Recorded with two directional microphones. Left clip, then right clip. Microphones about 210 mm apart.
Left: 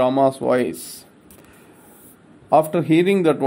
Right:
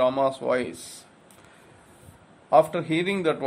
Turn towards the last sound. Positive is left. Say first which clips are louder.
# left 8 dB
turn(degrees=15)  # may be behind; listen again after turning